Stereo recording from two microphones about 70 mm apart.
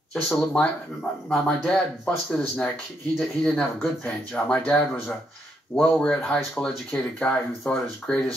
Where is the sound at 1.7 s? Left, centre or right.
Centre.